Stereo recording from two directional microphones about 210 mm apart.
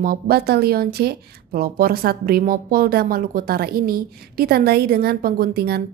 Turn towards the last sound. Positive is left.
turn(degrees=-45)  # may be behind; listen again after turning